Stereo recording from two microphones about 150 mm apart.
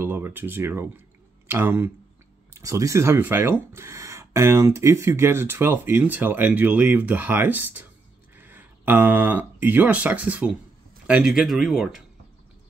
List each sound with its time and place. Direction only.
0.0 s speech: 15° right (ahead or behind)